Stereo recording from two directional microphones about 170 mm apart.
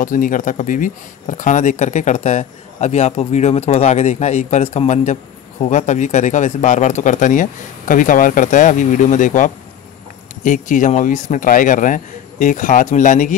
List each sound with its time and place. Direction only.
0.0 s speech: 50° left (ahead or behind)